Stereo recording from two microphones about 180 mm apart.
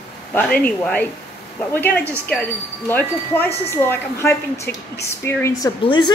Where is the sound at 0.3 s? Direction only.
10° left (ahead or behind).